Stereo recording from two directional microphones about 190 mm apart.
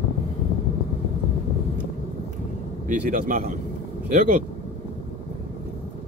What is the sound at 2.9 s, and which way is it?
Speech, 45° right (ahead or behind).